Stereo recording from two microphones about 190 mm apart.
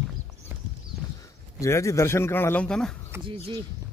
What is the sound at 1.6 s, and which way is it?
A man's voice, 15° left (ahead or behind).